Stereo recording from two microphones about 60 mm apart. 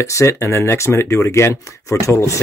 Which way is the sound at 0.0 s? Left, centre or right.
Left.